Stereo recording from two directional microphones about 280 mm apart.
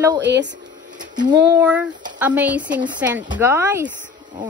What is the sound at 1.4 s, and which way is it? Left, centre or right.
A woman's voice, centre.